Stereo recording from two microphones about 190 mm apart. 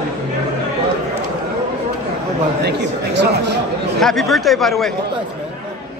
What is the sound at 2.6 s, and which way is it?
Speech, 60° right (ahead or behind).